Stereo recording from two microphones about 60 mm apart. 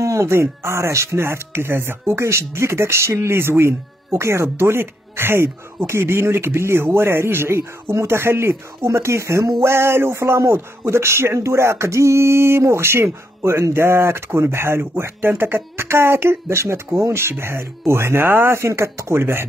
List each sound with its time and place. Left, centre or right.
0.0 s speech: right
9.6 s speech: right